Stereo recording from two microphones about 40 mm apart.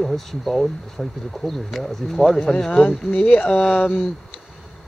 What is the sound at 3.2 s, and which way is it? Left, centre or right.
Speech, left.